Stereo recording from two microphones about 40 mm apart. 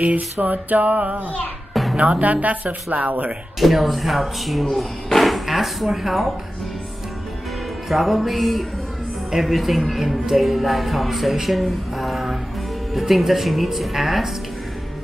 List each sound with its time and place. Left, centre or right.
0.0 s music: right
1.7 s music: centre
2.0 s music: right
2.4 s speech: right
3.5 s speech: centre
7.9 s speech: centre
11.6 s music: centre
12.9 s speech: centre